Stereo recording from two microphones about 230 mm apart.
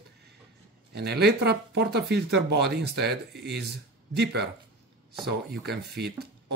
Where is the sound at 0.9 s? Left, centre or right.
Right.